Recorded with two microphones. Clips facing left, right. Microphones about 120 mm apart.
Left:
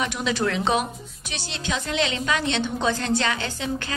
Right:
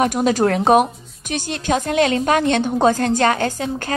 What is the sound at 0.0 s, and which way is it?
A woman's voice, 45° right (ahead or behind).